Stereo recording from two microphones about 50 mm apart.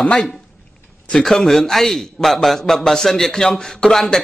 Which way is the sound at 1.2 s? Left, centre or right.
Centre.